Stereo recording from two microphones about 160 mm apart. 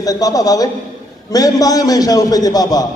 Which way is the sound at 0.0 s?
20° left (ahead or behind).